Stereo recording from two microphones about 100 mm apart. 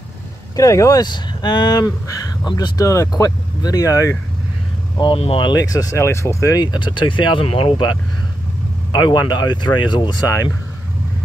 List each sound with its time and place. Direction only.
0.6 s speech: 35° left (ahead or behind)
2.8 s speech: 30° left (ahead or behind)
4.9 s speech: 55° left (ahead or behind)
5.4 s speech: 40° left (ahead or behind)
6.6 s speech: 50° left (ahead or behind)
8.9 s speech: 45° left (ahead or behind)
10.2 s speech: 35° left (ahead or behind)